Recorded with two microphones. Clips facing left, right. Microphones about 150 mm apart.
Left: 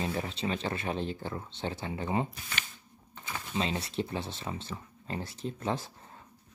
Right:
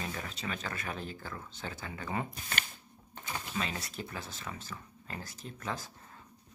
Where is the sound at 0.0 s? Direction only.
30° left (ahead or behind).